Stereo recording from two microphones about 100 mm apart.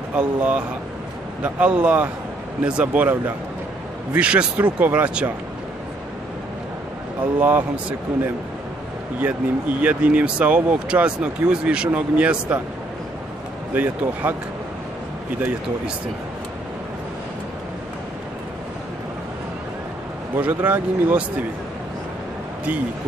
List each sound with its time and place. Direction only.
0.1 s speech: 10° right (ahead or behind)
7.3 s speech: 20° right (ahead or behind)
9.2 s speech: 15° right (ahead or behind)
13.7 s speech: 15° right (ahead or behind)
20.3 s speech: 15° right (ahead or behind)